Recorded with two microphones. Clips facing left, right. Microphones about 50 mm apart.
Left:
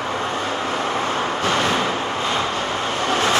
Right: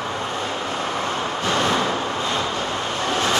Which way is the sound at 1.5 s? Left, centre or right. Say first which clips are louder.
Right 1 dB; centre.